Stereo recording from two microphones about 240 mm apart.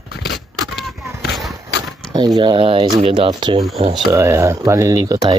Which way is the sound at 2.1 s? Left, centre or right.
Centre.